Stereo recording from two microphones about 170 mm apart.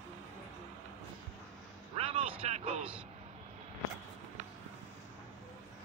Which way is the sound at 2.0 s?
35° right (ahead or behind).